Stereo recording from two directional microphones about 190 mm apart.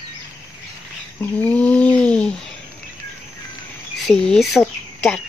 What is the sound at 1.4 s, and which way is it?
Bird, 5° left (ahead or behind).